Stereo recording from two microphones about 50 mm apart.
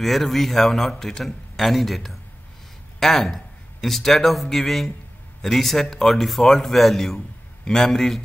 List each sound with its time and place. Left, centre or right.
0.0 s a man's voice: centre